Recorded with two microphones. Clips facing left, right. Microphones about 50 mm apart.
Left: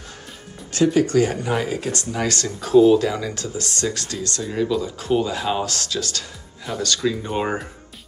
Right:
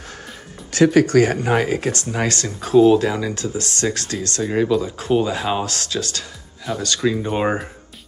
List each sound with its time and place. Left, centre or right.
0.8 s speech: right
1.4 s speech: right
2.1 s speech: right
3.1 s speech: centre
3.3 s speech: right
4.4 s speech: right
5.7 s speech: right
6.7 s speech: centre
7.0 s speech: centre